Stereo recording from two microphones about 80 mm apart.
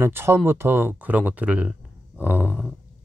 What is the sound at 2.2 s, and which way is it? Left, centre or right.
Speech, right.